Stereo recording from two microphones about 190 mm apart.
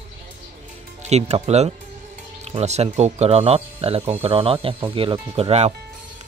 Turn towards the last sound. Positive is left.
turn(degrees=-35)  # may be behind; listen again after turning